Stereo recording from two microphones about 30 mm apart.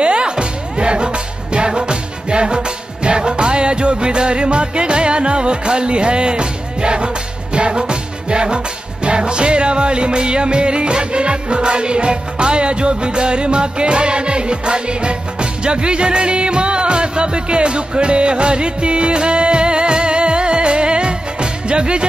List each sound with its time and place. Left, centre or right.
0.0 s music: right